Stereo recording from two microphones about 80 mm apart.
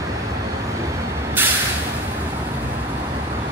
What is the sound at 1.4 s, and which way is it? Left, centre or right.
Vehicle, right.